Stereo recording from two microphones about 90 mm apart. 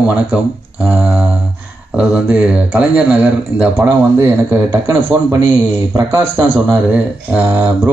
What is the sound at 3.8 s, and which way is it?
Speech, 35° right (ahead or behind).